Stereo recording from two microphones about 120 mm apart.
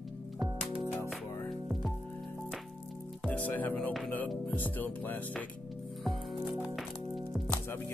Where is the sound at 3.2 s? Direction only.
10° left (ahead or behind).